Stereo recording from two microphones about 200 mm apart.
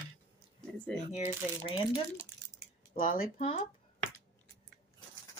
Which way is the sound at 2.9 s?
35° left (ahead or behind).